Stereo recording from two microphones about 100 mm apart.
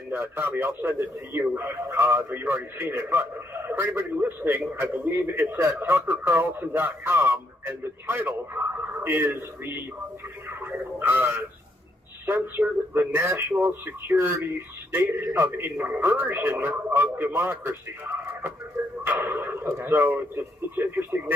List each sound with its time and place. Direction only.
0.1 s a man's voice: 20° right (ahead or behind)
10.6 s radio: 20° right (ahead or behind)
12.3 s a man's voice: 20° right (ahead or behind)